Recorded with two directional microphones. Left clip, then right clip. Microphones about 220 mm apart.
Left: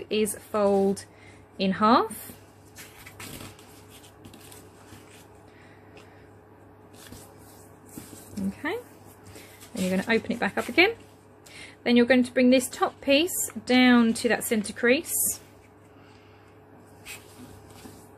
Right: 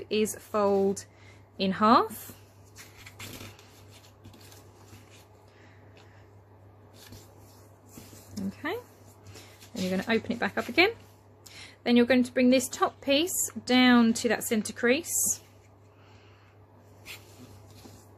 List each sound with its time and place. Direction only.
0.1 s a woman's voice: 15° right (ahead or behind)
8.4 s speech: 15° right (ahead or behind)
9.8 s a woman's voice: 10° right (ahead or behind)